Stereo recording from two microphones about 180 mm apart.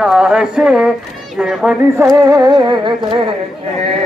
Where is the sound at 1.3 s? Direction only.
5° right (ahead or behind).